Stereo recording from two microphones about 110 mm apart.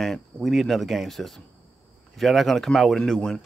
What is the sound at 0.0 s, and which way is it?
Speech, centre (ahead or behind).